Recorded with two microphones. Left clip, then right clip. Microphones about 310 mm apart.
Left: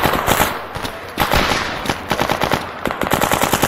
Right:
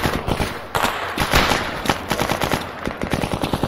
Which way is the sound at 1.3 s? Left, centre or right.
Centre.